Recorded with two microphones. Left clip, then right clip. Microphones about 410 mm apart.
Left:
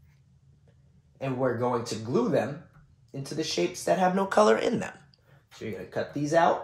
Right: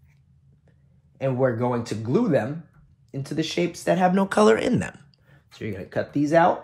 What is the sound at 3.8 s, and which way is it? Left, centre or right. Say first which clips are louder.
Speech: right 4 dB; right.